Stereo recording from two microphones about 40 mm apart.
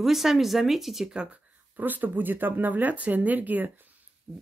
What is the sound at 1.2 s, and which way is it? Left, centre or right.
Speech, right.